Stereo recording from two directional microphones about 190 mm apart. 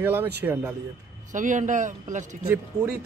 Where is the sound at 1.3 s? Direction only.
40° right (ahead or behind).